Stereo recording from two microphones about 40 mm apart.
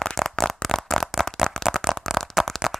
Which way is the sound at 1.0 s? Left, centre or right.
Centre.